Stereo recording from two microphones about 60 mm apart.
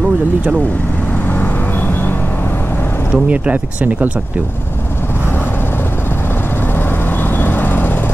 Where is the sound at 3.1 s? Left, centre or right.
Right.